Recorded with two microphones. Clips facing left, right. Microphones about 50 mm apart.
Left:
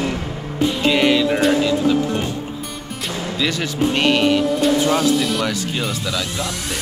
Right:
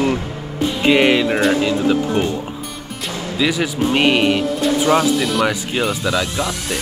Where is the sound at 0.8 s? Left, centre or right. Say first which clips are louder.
Right 3 dB; right.